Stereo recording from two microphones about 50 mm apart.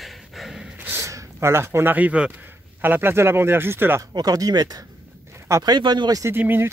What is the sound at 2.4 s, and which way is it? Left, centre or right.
Speech, right.